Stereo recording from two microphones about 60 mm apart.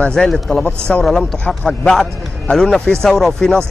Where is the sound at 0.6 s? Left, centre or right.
Centre.